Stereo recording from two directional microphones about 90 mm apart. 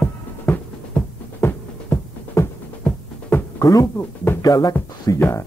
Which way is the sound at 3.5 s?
45° left (ahead or behind).